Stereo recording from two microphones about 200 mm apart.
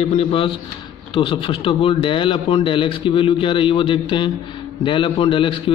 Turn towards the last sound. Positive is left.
turn(degrees=25)  # may be behind; listen again after turning